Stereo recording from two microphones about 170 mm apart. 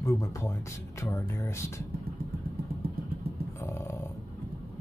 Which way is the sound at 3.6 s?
15° left (ahead or behind).